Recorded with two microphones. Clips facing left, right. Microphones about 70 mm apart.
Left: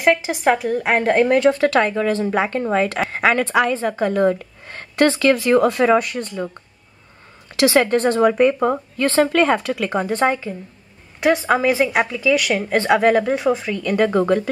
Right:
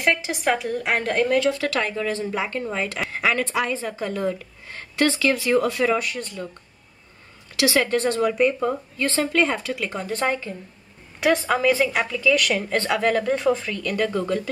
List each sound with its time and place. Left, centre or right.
0.0 s a woman's voice: left
7.5 s a woman's voice: left
9.9 s a woman's voice: left
11.1 s a woman's voice: centre
11.4 s a woman's voice: centre
13.7 s speech: left